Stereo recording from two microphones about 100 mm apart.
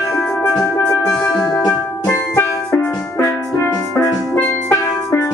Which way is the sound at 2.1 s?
30° left (ahead or behind).